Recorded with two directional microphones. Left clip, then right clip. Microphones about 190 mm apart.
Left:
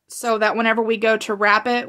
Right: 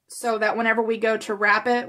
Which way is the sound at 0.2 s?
40° left (ahead or behind).